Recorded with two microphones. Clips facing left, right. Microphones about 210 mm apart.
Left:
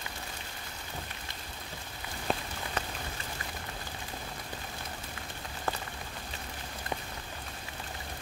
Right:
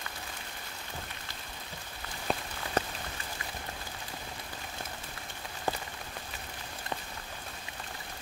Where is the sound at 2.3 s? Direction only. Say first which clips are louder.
Even; centre (ahead or behind).